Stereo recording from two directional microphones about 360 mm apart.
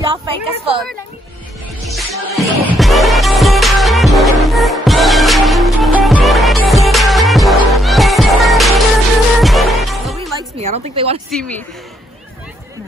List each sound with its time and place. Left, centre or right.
0.0 s a sound: centre
1.9 s music: centre
10.6 s a woman's voice: centre
11.2 s a woman's voice: centre